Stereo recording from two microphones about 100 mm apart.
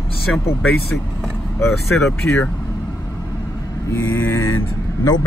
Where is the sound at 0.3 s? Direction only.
5° left (ahead or behind).